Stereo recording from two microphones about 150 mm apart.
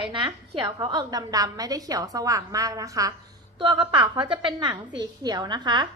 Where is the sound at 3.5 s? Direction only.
30° right (ahead or behind).